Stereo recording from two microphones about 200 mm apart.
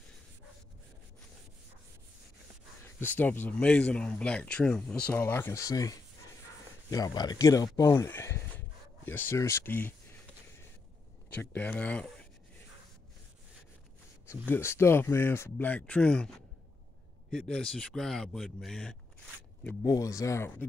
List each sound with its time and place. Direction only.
3.0 s speech: 10° left (ahead or behind)
11.2 s speech: 5° left (ahead or behind)
14.2 s speech: 10° left (ahead or behind)